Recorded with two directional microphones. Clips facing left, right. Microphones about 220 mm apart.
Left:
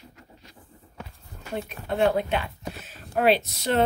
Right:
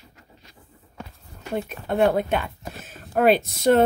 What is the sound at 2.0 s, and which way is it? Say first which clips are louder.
Speech: right 3 dB; 50° right (ahead or behind).